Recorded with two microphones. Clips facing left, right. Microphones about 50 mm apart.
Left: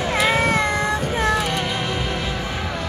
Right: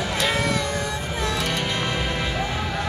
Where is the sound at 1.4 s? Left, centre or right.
Centre.